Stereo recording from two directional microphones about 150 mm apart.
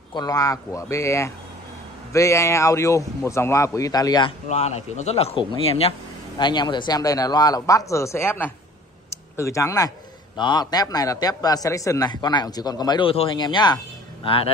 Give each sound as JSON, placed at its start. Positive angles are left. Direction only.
{"t": 0.1, "sound": "a man's voice", "side_deg": 25}
{"t": 4.5, "sound": "speech", "side_deg": 45}
{"t": 6.3, "sound": "a man's voice", "side_deg": 30}